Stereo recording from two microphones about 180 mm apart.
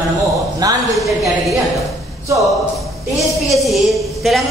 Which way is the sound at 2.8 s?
Centre (ahead or behind).